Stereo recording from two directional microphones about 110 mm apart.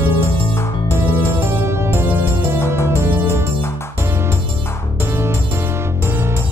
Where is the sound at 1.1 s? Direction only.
20° right (ahead or behind).